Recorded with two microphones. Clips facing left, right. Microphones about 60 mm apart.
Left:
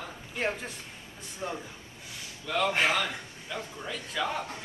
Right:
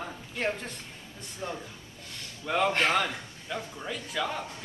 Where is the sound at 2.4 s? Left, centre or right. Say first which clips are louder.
Right 2 dB; centre.